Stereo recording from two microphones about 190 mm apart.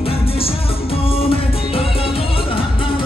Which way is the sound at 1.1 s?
30° left (ahead or behind).